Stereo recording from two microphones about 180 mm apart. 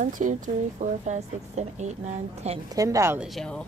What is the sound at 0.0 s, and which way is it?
Speech, 45° right (ahead or behind).